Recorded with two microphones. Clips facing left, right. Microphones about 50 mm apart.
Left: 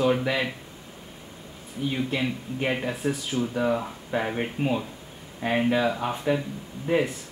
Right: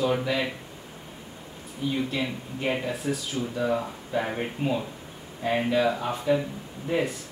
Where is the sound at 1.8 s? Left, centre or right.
Left.